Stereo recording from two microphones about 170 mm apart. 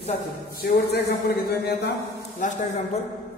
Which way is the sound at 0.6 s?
70° left (ahead or behind).